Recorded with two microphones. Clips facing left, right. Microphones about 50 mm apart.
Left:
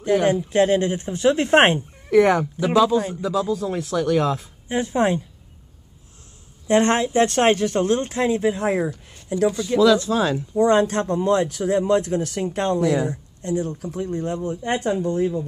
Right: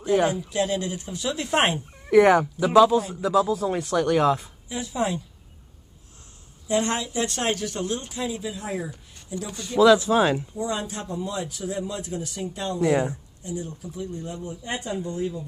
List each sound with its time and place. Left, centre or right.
0.3 s speech: left
2.0 s speech: centre
4.6 s speech: left
6.7 s speech: left
9.8 s speech: centre
10.5 s speech: left
12.8 s speech: right
13.1 s speech: left